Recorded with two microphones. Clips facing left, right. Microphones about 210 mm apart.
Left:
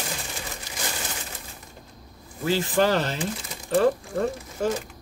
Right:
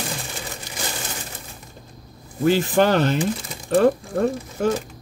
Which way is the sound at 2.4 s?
55° right (ahead or behind).